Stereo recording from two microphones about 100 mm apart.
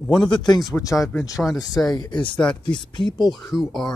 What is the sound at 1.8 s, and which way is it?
Speech, 45° left (ahead or behind).